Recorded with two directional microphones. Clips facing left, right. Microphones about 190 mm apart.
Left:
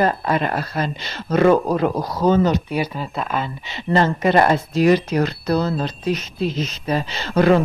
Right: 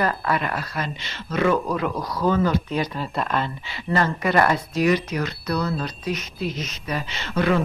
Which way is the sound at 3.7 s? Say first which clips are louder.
Left 5 dB; 25° left (ahead or behind).